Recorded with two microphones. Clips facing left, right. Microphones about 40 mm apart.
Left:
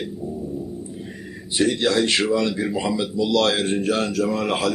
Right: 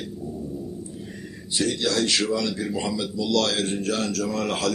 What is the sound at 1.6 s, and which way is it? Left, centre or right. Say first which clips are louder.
A man's voice: left 5 dB; left.